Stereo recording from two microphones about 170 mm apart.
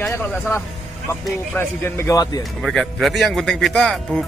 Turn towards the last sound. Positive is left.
turn(degrees=5)  # may be behind; listen again after turning